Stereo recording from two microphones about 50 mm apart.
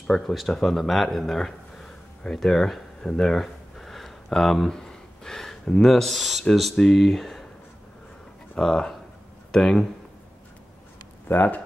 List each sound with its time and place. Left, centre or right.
0.3 s speech: centre
3.0 s a sound: centre
6.5 s speech: centre
8.5 s speech: centre
11.2 s speech: left